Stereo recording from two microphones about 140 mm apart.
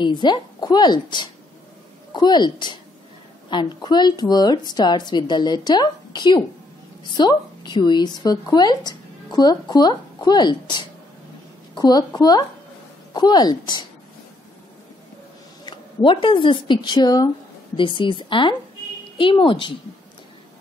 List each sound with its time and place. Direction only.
0.0 s a woman's voice: 30° left (ahead or behind)
15.6 s speech: 35° left (ahead or behind)